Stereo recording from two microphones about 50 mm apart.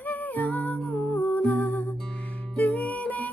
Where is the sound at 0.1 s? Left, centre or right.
Left.